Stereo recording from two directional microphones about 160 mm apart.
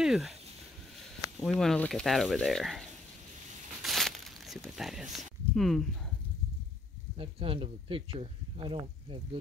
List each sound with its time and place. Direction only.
0.0 s speech: centre (ahead or behind)
1.4 s speech: centre (ahead or behind)
3.8 s a sound: centre (ahead or behind)
7.2 s speech: 35° right (ahead or behind)